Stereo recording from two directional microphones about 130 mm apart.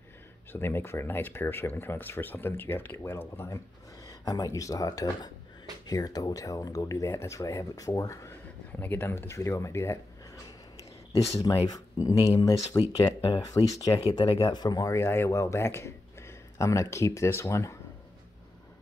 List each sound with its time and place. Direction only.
0.5 s speech: 15° left (ahead or behind)
8.7 s speech: 15° left (ahead or behind)
11.4 s speech: 30° left (ahead or behind)